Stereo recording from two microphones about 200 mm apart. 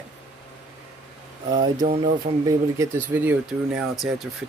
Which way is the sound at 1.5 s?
20° right (ahead or behind).